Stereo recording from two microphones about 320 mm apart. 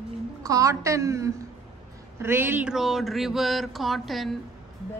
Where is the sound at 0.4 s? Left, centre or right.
Centre.